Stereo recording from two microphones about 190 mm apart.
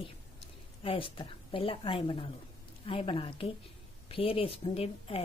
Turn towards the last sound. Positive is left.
turn(degrees=30)  # may be behind; listen again after turning